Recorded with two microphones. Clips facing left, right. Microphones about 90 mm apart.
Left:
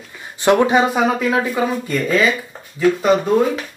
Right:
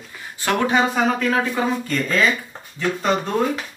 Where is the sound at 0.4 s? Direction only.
20° left (ahead or behind).